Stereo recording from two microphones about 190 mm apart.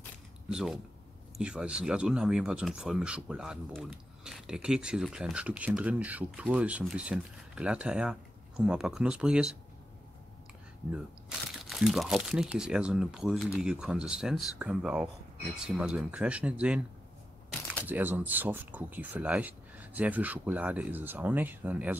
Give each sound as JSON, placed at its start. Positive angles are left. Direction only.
{"t": 0.5, "sound": "speech", "side_deg": -5}
{"t": 10.9, "sound": "speech", "side_deg": -5}
{"t": 17.8, "sound": "speech", "side_deg": -10}